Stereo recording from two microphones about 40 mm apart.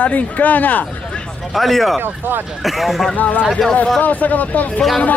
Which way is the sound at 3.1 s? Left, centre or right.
Left.